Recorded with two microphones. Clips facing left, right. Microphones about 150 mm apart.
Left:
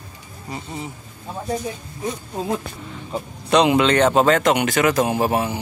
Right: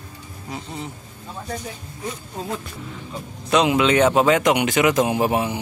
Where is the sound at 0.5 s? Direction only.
Centre (ahead or behind).